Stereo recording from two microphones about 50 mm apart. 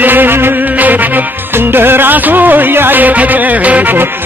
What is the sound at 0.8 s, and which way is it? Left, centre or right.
Music, right.